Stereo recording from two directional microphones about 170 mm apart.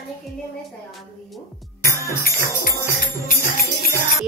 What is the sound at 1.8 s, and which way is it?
Music, 60° left (ahead or behind).